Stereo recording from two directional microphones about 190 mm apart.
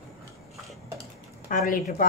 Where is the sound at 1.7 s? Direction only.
45° left (ahead or behind).